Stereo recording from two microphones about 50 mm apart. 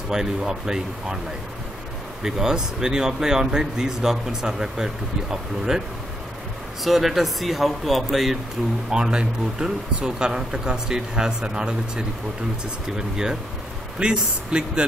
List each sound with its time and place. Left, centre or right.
0.1 s speech: centre
2.2 s speech: centre
6.8 s speech: centre
8.9 s speech: centre
12.8 s speech: centre